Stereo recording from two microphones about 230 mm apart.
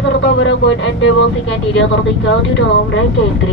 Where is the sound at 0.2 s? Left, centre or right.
Left.